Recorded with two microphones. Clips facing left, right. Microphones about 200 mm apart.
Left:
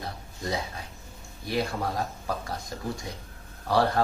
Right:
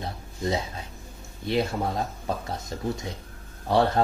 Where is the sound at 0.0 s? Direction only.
25° right (ahead or behind).